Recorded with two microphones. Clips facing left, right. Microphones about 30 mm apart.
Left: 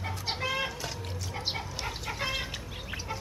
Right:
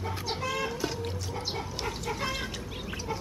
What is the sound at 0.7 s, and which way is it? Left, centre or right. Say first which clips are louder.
Music: right 4 dB; centre.